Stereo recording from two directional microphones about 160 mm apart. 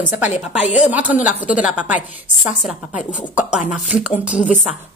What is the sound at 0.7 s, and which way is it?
Speech, 10° right (ahead or behind).